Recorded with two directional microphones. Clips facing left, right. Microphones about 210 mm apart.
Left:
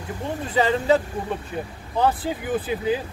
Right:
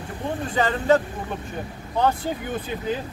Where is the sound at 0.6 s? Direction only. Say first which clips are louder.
Left 1 dB; 10° left (ahead or behind).